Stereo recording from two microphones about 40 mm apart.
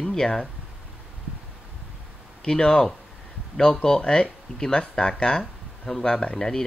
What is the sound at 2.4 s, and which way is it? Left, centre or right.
Speech, centre.